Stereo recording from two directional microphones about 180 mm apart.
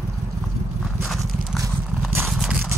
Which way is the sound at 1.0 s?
Centre (ahead or behind).